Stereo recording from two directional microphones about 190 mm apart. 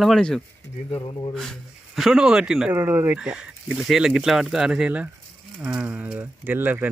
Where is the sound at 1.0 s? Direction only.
25° left (ahead or behind).